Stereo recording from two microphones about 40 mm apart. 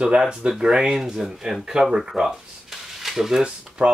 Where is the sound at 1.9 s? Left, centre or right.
Centre.